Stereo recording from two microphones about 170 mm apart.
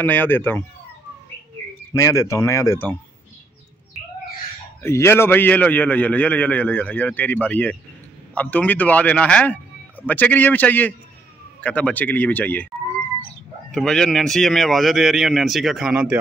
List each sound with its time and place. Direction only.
0.0 s a man's voice: 10° left (ahead or behind)
2.0 s a man's voice: 20° left (ahead or behind)
4.8 s a man's voice: 15° left (ahead or behind)
13.7 s a man's voice: 5° left (ahead or behind)